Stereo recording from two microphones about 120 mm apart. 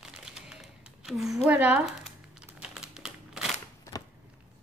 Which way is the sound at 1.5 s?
15° right (ahead or behind).